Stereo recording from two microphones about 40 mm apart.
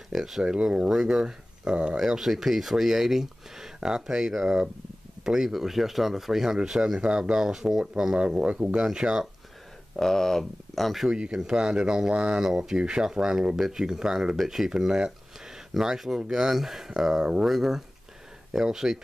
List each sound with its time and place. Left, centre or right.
0.1 s speech: centre
0.4 s speech: right
0.8 s speech: centre
2.0 s speech: centre
7.3 s speech: centre
8.2 s speech: right
8.7 s speech: centre
9.9 s speech: centre
11.1 s speech: right; by 14.7 s centre
14.7 s speech: centre